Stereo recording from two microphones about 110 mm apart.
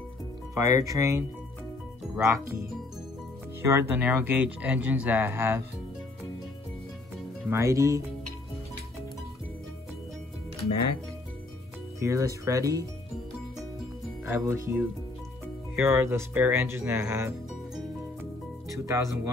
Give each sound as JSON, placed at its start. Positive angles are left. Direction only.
{"t": 0.6, "sound": "speech", "side_deg": -30}
{"t": 2.2, "sound": "speech", "side_deg": -25}
{"t": 3.6, "sound": "speech", "side_deg": -25}
{"t": 7.5, "sound": "speech", "side_deg": -30}
{"t": 12.0, "sound": "speech", "side_deg": -30}
{"t": 14.2, "sound": "speech", "side_deg": -25}
{"t": 18.7, "sound": "speech", "side_deg": -30}